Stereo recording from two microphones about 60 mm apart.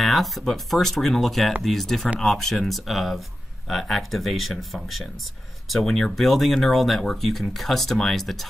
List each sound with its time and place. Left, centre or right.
0.0 s speech: centre